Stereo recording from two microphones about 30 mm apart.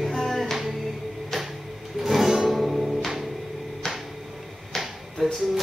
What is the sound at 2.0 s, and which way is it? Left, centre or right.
Music, centre.